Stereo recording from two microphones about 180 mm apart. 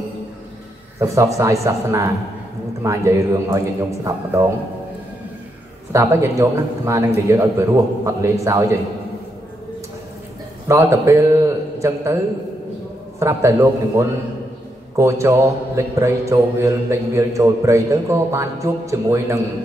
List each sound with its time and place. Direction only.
0.9 s a man's voice: 15° right (ahead or behind)
5.9 s a man's voice: 15° right (ahead or behind)
10.7 s a man's voice: 15° right (ahead or behind)
13.2 s a man's voice: 15° right (ahead or behind)